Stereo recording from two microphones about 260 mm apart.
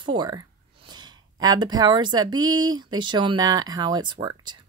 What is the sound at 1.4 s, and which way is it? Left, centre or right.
Speech, centre.